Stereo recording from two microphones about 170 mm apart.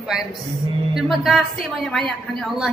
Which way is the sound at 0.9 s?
Centre (ahead or behind).